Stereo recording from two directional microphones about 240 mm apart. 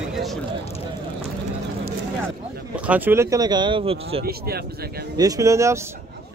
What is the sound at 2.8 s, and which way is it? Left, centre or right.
A man's voice, centre.